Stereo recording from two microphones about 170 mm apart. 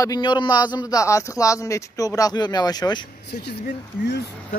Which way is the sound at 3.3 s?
75° left (ahead or behind).